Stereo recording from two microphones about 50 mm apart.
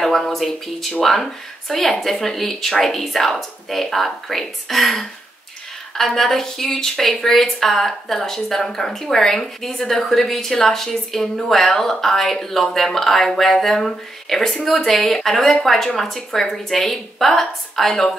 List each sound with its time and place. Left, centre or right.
0.0 s speech: centre